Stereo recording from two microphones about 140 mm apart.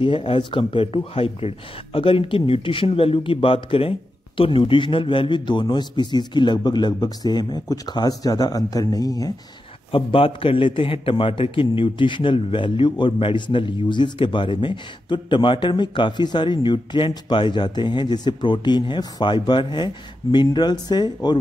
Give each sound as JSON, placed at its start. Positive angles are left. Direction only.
{"t": 0.0, "sound": "a man's voice", "side_deg": 40}
{"t": 9.8, "sound": "a man's voice", "side_deg": 40}